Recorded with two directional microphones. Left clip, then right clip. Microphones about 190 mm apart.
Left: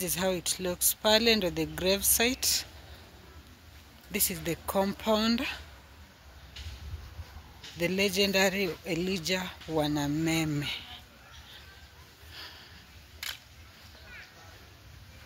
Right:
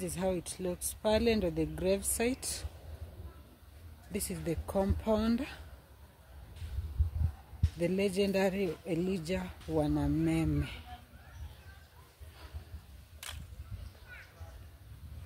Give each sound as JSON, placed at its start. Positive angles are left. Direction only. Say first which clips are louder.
{"t": 0.0, "sound": "speech", "louder": "left 4 dB", "side_deg": 5}
{"t": 4.1, "sound": "speech", "louder": "left 5 dB", "side_deg": 0}
{"t": 7.8, "sound": "speech", "louder": "left 4 dB", "side_deg": 0}
{"t": 13.2, "sound": "a sound", "louder": "left 8 dB", "side_deg": 0}